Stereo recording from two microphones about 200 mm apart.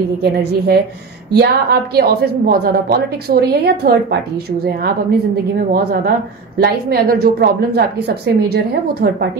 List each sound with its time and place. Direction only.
0.2 s a woman's voice: 55° right (ahead or behind)